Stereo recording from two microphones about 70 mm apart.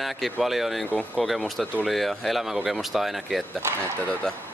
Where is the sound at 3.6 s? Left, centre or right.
Right.